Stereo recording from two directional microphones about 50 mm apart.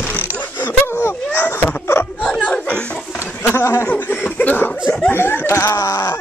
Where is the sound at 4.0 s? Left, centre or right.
Left.